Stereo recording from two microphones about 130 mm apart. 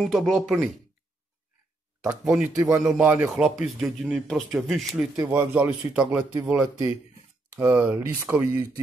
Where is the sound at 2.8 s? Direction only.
5° right (ahead or behind).